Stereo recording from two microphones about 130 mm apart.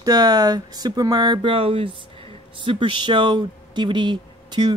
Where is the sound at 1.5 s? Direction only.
45° right (ahead or behind).